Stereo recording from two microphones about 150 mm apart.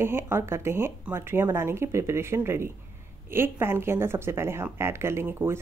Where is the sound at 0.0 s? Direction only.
15° right (ahead or behind).